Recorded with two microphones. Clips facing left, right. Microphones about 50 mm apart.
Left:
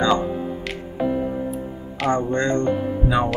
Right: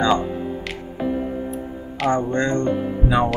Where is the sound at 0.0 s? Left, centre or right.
Centre.